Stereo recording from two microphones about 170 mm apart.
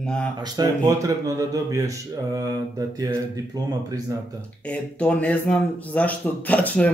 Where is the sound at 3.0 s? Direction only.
20° right (ahead or behind).